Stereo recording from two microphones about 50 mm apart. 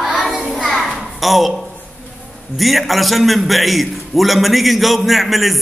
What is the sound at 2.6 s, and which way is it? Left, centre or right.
A man's voice, centre.